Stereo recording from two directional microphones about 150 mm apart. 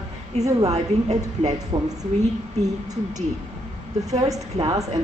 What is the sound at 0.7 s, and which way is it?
A woman's voice, 45° right (ahead or behind).